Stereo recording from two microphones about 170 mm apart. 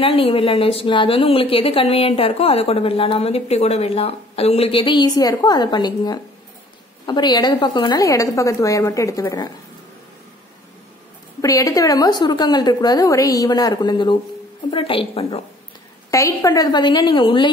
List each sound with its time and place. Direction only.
0.0 s a woman's voice: 35° left (ahead or behind)
11.4 s a woman's voice: 20° left (ahead or behind)
16.1 s a woman's voice: 20° left (ahead or behind)